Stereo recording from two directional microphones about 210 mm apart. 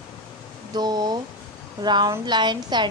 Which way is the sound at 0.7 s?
20° right (ahead or behind).